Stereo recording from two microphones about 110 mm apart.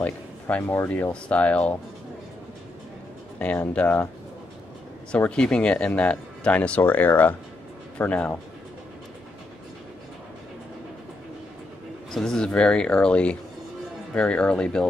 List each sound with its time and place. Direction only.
0.0 s speech: 15° left (ahead or behind)
3.3 s speech: 10° left (ahead or behind)
5.1 s speech: 10° left (ahead or behind)
12.1 s speech: 5° left (ahead or behind)